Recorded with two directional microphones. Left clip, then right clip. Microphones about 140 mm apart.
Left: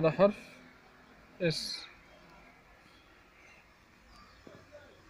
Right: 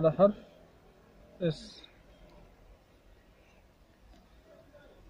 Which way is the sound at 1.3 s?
90° left.